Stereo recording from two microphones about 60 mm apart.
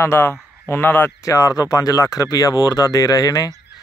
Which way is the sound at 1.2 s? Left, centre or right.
Left.